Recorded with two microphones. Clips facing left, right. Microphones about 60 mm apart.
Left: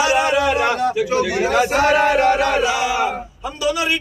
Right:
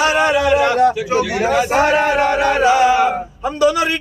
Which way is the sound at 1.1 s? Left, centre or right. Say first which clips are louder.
Right 2 dB; centre.